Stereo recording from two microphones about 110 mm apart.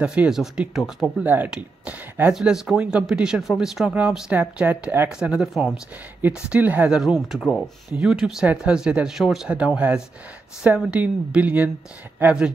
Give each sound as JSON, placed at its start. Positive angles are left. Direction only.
{"t": 0.0, "sound": "speech", "side_deg": -10}
{"t": 1.2, "sound": "speech", "side_deg": -15}
{"t": 4.3, "sound": "speech", "side_deg": -15}
{"t": 5.3, "sound": "speech", "side_deg": -5}
{"t": 6.2, "sound": "speech", "side_deg": -15}
{"t": 7.0, "sound": "speech", "side_deg": 0}